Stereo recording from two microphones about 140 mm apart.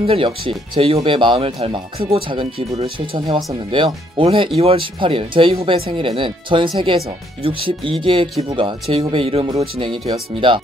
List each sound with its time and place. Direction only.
0.0 s speech: 40° right (ahead or behind)